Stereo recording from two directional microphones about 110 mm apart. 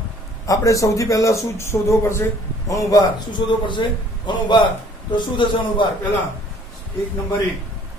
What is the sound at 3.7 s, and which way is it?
A man's voice, 45° left (ahead or behind).